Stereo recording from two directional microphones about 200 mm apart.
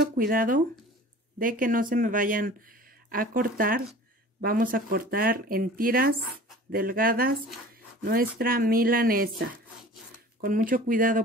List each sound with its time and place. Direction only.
0.3 s speech: 45° right (ahead or behind)